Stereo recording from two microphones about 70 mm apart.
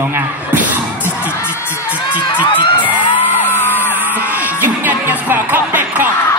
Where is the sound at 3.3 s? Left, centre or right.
Left.